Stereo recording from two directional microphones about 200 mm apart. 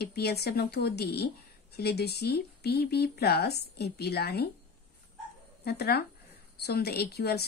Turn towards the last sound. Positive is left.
turn(degrees=55)  # may be behind; listen again after turning